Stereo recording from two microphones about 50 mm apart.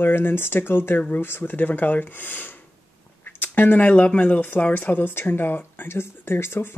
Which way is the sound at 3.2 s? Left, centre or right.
Left.